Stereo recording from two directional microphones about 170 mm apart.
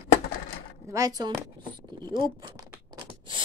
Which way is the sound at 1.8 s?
25° right (ahead or behind).